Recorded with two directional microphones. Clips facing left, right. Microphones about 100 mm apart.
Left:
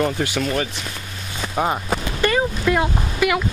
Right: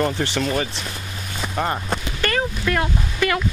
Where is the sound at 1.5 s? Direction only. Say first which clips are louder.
Left 3 dB; 10° left (ahead or behind).